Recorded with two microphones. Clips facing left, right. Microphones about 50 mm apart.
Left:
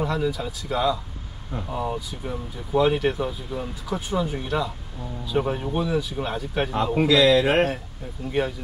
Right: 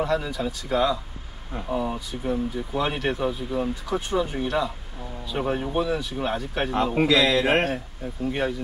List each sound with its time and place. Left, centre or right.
0.0 s a man's voice: centre
6.7 s a man's voice: right
7.1 s a man's voice: centre